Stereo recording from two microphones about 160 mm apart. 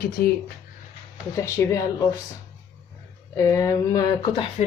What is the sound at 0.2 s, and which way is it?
Speech, 70° left (ahead or behind).